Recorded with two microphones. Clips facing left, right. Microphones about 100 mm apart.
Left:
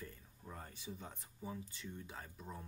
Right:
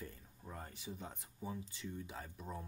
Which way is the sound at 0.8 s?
15° right (ahead or behind).